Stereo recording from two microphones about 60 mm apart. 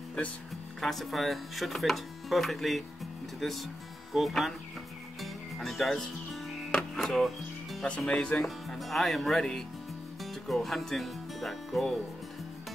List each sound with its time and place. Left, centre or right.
0.7 s speech: centre
5.2 s music: centre
8.1 s speech: centre
8.5 s speech: centre